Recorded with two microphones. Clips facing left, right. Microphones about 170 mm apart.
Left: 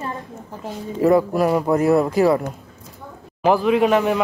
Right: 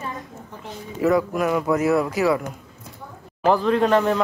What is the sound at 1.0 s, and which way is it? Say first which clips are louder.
Speech: left 4 dB; 30° left (ahead or behind).